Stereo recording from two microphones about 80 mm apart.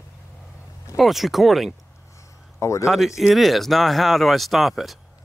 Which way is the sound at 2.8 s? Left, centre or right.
Centre.